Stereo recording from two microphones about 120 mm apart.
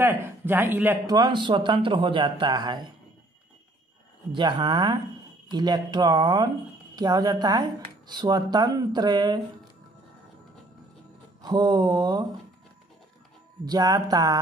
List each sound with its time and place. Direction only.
0.0 s speech: 15° right (ahead or behind)
1.0 s a man's voice: 35° right (ahead or behind)
4.3 s a man's voice: 40° right (ahead or behind)
11.4 s a man's voice: 35° right (ahead or behind)
13.7 s a man's voice: 35° right (ahead or behind)